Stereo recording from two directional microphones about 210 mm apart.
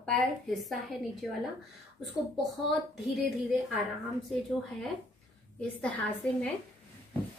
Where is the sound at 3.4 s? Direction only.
Centre (ahead or behind).